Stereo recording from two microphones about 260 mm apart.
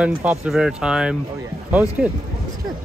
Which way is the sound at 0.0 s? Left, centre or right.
Centre.